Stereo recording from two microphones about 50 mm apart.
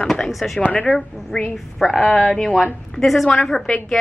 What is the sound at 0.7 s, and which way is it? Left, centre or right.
Speech, left.